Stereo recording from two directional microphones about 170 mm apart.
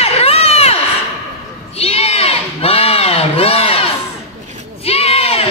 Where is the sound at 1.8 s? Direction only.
35° left (ahead or behind).